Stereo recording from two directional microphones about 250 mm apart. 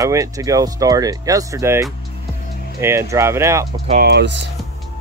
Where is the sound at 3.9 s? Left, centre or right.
Right.